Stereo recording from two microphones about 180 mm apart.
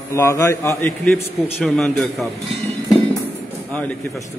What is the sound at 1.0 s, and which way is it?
A man's voice, centre (ahead or behind).